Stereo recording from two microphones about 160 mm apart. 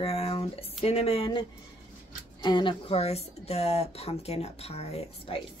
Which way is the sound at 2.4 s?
30° left (ahead or behind).